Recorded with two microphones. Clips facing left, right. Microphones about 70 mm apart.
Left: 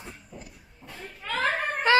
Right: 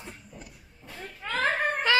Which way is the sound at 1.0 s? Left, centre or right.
Right.